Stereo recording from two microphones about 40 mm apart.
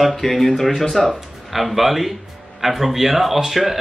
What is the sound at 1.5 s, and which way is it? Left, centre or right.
Speech, centre.